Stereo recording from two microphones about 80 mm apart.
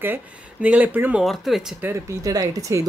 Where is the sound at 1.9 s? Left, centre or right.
Right.